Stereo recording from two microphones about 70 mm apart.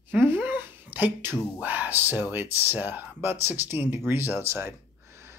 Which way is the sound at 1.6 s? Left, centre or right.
Right.